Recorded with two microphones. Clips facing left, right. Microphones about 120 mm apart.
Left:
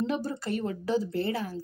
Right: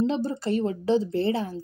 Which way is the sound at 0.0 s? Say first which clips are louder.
Right 5 dB; 25° right (ahead or behind).